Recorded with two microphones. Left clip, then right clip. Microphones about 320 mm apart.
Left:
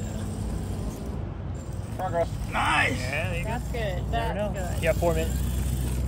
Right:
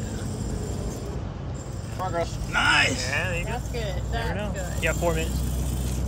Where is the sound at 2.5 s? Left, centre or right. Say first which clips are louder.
Right 5 dB; left.